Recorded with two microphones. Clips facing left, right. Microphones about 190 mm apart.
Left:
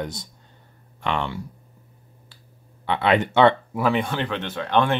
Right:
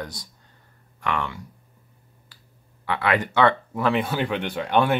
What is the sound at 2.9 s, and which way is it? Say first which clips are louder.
Speech: left 3 dB; 25° left (ahead or behind).